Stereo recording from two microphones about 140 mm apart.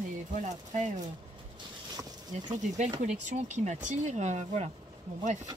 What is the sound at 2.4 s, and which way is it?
Speech, 60° right (ahead or behind).